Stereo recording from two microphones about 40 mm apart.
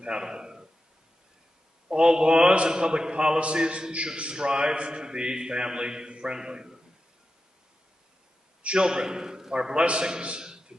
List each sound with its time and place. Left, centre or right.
0.0 s speech: right
2.0 s a man's voice: right
8.6 s a man's voice: right